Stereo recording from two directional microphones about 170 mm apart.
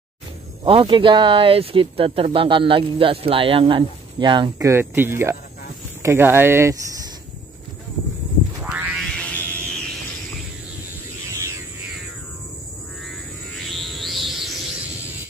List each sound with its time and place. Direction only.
0.7 s speech: 30° right (ahead or behind); by 6.8 s 15° right (ahead or behind)
8.7 s music: 10° right (ahead or behind)
9.0 s a sound: 5° left (ahead or behind)
13.6 s music: centre (ahead or behind)